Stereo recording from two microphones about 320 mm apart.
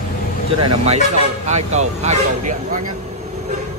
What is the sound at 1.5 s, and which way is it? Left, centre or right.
Speech, right.